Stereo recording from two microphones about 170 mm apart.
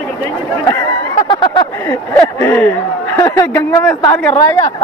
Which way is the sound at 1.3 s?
25° left (ahead or behind).